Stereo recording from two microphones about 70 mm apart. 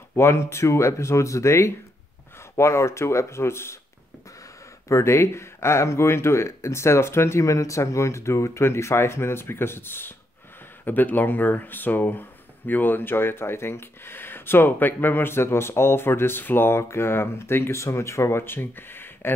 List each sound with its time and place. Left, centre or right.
0.1 s speech: left
4.8 s speech: left